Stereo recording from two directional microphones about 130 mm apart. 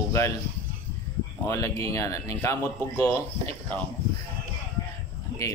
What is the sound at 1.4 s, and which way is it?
Speech, 25° left (ahead or behind).